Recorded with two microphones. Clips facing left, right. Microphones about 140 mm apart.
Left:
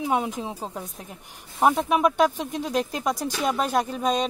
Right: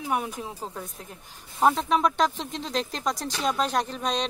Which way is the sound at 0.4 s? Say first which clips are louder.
Left 3 dB; 20° left (ahead or behind).